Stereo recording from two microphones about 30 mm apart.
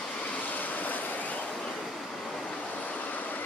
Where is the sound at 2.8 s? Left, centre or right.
Left.